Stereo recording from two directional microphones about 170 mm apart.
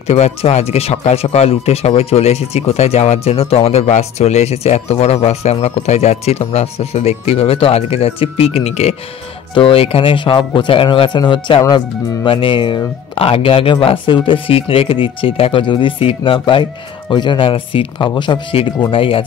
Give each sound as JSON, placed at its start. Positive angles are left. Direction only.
{"t": 0.0, "sound": "speech", "side_deg": 40}